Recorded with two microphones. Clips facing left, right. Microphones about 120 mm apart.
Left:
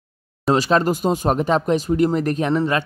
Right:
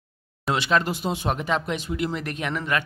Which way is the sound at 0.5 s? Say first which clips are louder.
Left 6 dB; 35° left (ahead or behind).